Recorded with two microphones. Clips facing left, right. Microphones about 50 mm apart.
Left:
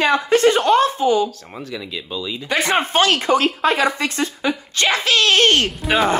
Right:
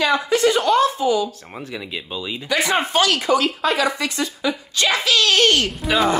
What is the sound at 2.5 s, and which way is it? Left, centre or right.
A woman's voice, left.